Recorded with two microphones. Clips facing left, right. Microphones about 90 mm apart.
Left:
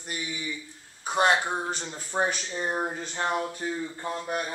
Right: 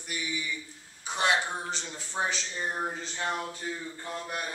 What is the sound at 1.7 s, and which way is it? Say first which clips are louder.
Speech: left 4 dB; 45° left (ahead or behind).